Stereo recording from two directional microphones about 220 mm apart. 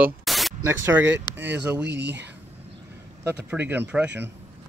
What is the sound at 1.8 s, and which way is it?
Speech, 50° right (ahead or behind).